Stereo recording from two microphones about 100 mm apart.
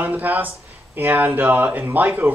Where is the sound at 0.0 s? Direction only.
20° right (ahead or behind).